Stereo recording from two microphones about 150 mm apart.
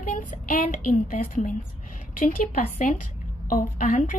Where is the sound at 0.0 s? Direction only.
60° left (ahead or behind).